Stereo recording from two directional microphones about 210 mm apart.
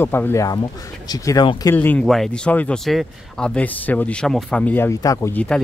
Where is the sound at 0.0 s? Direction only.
10° left (ahead or behind).